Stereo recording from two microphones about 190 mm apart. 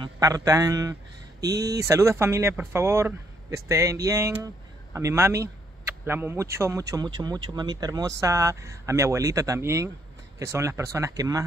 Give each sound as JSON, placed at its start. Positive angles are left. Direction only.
{"t": 0.0, "sound": "speech", "side_deg": -20}